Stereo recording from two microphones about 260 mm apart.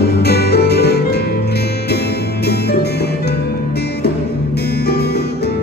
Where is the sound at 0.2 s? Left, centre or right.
Left.